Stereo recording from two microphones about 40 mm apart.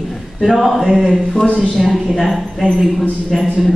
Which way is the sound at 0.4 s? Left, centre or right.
Centre.